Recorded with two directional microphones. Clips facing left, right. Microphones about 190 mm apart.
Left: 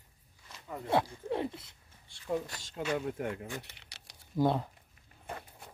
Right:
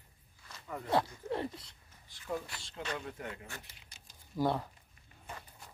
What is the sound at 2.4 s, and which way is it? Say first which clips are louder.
Speech: left 3 dB; 45° left (ahead or behind).